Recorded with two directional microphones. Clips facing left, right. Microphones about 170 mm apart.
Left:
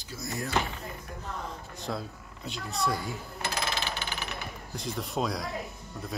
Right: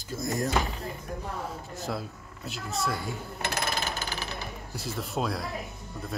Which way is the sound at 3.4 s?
50° right (ahead or behind).